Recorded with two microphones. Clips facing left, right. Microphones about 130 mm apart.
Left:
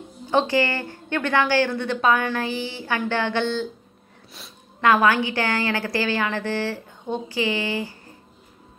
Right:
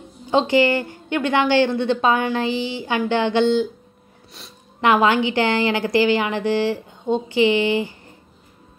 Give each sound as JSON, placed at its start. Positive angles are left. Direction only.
{"t": 0.3, "sound": "a woman's voice", "side_deg": -20}
{"t": 4.8, "sound": "a woman's voice", "side_deg": -20}